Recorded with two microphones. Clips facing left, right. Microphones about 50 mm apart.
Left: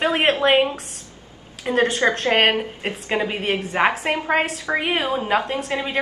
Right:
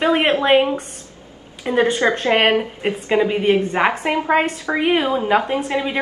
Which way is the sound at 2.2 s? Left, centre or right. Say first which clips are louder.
Right 2 dB; centre.